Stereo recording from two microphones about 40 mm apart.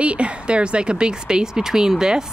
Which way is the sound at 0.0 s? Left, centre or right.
Right.